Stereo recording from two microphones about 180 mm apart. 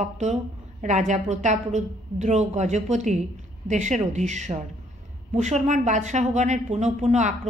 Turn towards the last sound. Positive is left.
turn(degrees=-40)  # may be behind; listen again after turning